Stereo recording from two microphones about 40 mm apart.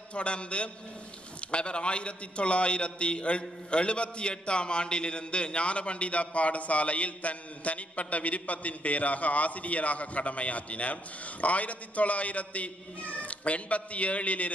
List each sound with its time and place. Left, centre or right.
0.1 s a man's voice: left